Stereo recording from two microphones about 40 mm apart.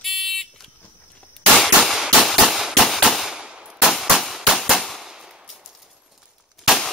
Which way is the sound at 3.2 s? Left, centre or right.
Centre.